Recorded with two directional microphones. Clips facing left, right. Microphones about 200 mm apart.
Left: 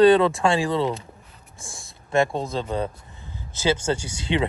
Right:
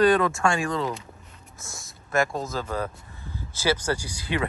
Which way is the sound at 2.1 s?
30° left (ahead or behind).